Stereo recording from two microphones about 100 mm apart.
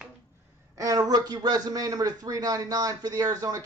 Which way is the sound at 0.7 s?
35° right (ahead or behind).